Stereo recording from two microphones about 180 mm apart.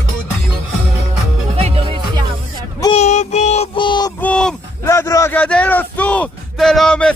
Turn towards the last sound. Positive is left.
turn(degrees=5)  # may be behind; listen again after turning